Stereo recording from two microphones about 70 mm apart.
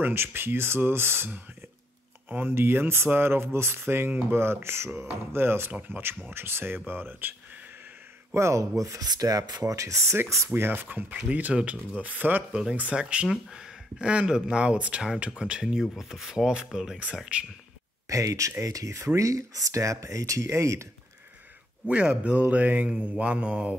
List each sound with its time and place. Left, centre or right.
0.0 s speech: right
8.4 s speech: right
10.5 s speech: right; by 17.5 s centre
18.0 s speech: right
21.8 s speech: centre